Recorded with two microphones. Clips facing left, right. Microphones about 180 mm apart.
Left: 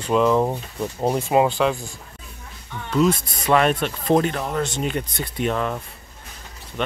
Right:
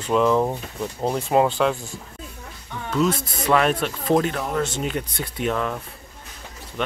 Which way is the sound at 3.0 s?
Centre (ahead or behind).